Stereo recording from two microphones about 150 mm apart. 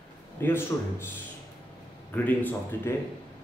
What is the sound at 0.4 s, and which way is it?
Speech, 15° left (ahead or behind).